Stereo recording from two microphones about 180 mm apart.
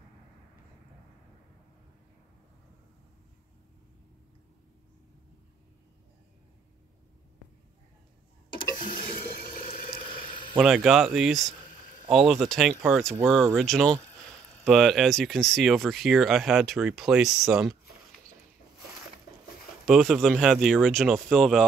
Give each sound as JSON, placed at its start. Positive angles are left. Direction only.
{"t": 8.7, "sound": "water", "side_deg": 45}
{"t": 10.6, "sound": "speech", "side_deg": 0}
{"t": 19.9, "sound": "speech", "side_deg": 0}